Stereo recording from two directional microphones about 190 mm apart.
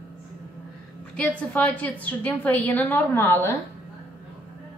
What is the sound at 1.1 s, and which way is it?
A woman's voice, 10° left (ahead or behind).